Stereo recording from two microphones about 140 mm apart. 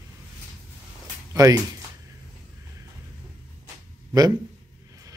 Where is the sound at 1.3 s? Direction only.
25° right (ahead or behind).